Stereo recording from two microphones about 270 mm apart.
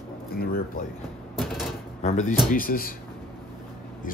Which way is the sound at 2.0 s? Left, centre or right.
Left.